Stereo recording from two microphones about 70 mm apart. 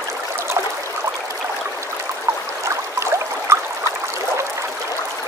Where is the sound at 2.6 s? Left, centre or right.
Right.